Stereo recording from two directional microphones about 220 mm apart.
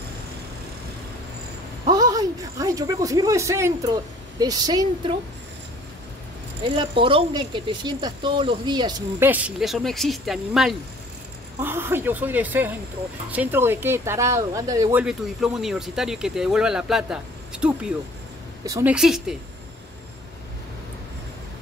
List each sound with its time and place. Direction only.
1.9 s speech: 15° right (ahead or behind)
6.6 s speech: 25° right (ahead or behind)
9.3 s speech: 5° right (ahead or behind)